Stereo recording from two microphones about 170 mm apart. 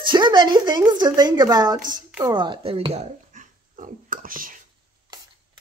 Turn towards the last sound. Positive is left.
turn(degrees=-55)  # may be behind; listen again after turning